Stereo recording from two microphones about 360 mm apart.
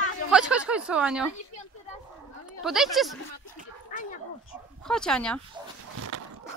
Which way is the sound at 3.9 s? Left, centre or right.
Left.